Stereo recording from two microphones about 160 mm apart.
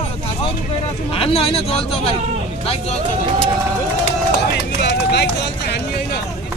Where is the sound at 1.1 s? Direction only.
35° left (ahead or behind).